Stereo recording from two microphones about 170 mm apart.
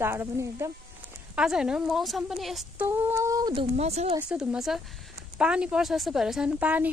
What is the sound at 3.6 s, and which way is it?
Speech, 40° right (ahead or behind).